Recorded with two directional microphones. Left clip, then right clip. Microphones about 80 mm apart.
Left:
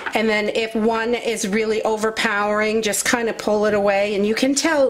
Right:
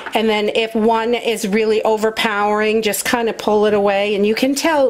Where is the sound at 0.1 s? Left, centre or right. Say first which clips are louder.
Right 4 dB; right.